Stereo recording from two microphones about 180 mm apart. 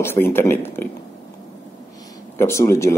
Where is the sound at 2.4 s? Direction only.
15° left (ahead or behind).